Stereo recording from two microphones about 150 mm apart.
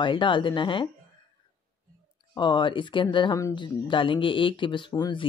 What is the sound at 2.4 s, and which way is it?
Speech, 30° left (ahead or behind).